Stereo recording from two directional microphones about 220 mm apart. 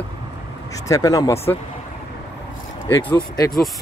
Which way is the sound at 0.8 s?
15° left (ahead or behind).